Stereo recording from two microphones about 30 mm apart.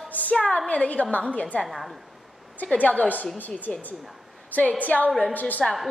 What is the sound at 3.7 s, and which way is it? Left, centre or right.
Speech, left.